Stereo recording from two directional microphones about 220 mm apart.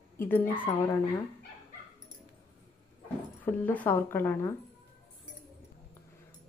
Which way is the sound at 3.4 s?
10° left (ahead or behind).